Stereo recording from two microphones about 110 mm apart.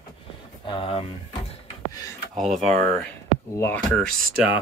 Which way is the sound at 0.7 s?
55° left (ahead or behind).